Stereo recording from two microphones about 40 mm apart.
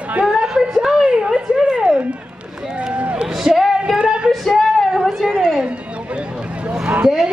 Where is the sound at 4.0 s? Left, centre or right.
Right.